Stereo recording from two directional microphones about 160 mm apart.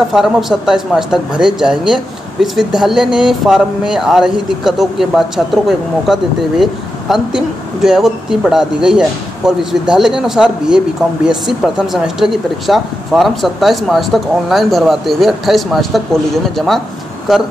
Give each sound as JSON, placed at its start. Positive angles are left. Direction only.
{"t": 0.1, "sound": "speech", "side_deg": 0}